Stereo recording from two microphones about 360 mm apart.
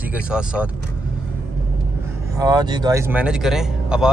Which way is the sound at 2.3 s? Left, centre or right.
Centre.